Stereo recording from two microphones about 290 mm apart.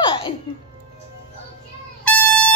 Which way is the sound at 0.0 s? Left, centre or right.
Centre.